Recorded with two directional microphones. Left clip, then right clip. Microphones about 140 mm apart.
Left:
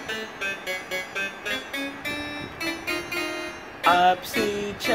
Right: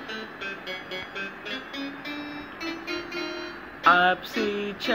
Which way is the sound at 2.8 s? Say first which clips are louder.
Left 4 dB; 50° left (ahead or behind).